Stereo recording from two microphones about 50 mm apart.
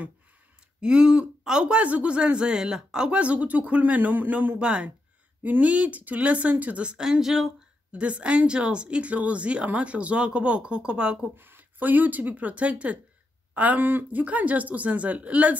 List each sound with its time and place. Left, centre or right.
0.7 s speech: centre; by 4.6 s right
4.6 s speech: right
5.4 s speech: right
7.0 s speech: centre
7.9 s speech: right
11.3 s speech: right
13.8 s speech: right
14.2 s speech: right